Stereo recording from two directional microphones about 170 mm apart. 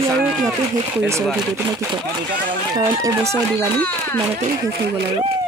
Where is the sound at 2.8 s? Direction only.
15° right (ahead or behind).